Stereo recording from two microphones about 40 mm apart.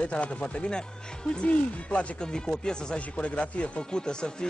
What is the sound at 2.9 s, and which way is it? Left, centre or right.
Speech, left.